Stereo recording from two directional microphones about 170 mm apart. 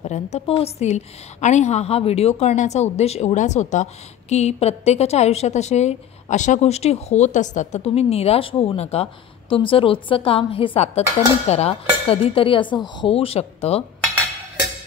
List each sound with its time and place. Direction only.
0.0 s a woman's voice: 40° left (ahead or behind)